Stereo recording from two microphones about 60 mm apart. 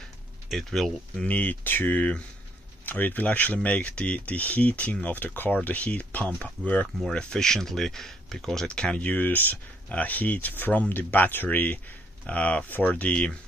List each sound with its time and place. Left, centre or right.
0.5 s speech: centre
1.2 s speech: left
7.1 s speech: centre
8.7 s speech: left